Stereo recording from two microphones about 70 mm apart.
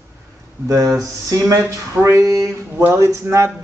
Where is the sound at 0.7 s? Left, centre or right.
Right.